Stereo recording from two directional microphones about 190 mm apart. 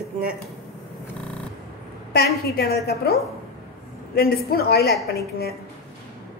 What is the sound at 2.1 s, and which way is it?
A woman's voice, 55° left (ahead or behind).